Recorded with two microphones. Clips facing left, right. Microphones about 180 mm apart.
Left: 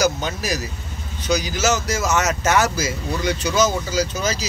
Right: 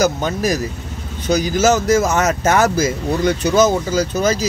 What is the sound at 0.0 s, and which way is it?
A man's voice, 50° right (ahead or behind).